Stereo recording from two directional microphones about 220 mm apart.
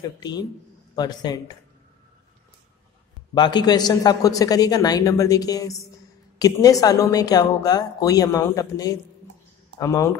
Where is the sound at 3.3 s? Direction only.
20° left (ahead or behind).